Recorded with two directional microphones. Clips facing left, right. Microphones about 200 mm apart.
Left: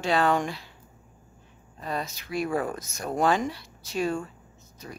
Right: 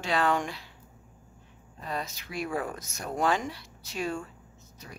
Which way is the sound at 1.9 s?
40° left (ahead or behind).